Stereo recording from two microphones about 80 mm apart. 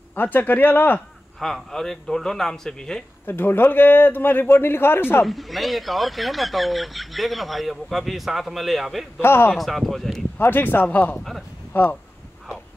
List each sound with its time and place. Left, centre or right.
0.1 s a man's voice: left
1.4 s speech: centre
3.3 s a man's voice: left
5.2 s speech: centre
9.2 s a man's voice: left
9.6 s speech: centre
10.3 s a man's voice: left